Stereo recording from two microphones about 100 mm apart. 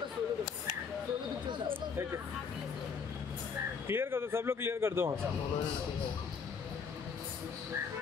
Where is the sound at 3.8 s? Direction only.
25° right (ahead or behind).